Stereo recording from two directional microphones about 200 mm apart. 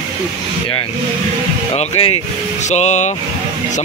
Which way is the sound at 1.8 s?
30° left (ahead or behind).